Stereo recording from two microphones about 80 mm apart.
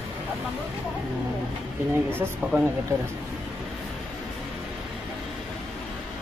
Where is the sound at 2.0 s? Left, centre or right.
Right.